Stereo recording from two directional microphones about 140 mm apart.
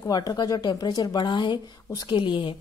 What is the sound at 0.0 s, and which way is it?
A woman's voice, 25° left (ahead or behind).